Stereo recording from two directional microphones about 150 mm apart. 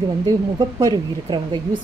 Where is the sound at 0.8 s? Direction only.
30° right (ahead or behind).